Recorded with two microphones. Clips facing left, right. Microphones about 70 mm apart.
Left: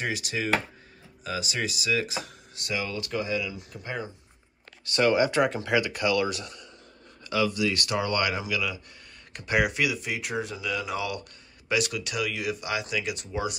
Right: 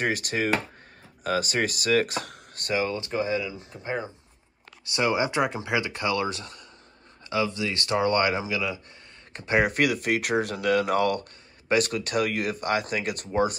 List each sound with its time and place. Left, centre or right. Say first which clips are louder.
0.0 s speech: right 4 dB; right
9.8 s speech: right 5 dB; right